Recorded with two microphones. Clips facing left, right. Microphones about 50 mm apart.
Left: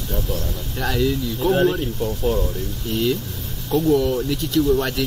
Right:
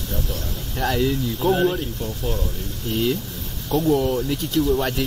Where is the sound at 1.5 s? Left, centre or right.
Centre.